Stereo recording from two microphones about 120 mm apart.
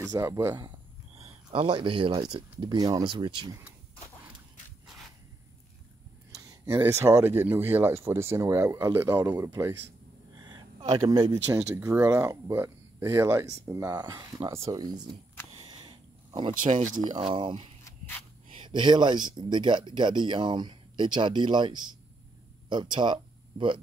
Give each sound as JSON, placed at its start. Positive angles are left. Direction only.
{"t": 0.1, "sound": "speech", "side_deg": -30}
{"t": 1.1, "sound": "speech", "side_deg": -55}
{"t": 3.1, "sound": "speech", "side_deg": -40}
{"t": 6.4, "sound": "a sound", "side_deg": -30}
{"t": 6.8, "sound": "speech", "side_deg": -20}
{"t": 11.1, "sound": "speech", "side_deg": -50}
{"t": 11.5, "sound": "speech", "side_deg": -30}
{"t": 15.7, "sound": "wild animals", "side_deg": -40}
{"t": 16.6, "sound": "speech", "side_deg": -90}
{"t": 17.1, "sound": "speech", "side_deg": -45}